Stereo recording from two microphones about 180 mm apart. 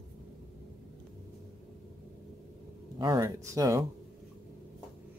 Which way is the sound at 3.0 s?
20° right (ahead or behind).